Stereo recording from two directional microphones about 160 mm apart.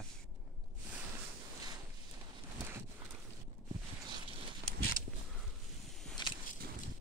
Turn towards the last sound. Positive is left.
turn(degrees=30)  # may be behind; listen again after turning